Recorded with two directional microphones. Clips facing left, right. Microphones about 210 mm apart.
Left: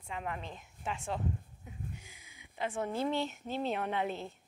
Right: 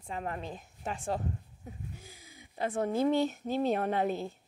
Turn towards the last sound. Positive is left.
turn(degrees=-40)  # may be behind; listen again after turning